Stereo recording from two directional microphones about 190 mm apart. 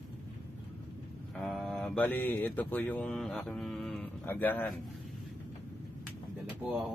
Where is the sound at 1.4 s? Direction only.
Centre (ahead or behind).